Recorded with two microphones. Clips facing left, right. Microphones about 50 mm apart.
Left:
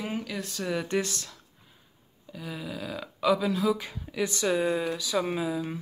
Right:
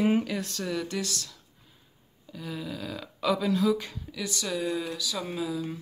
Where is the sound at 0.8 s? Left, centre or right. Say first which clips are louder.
Left 4 dB; left.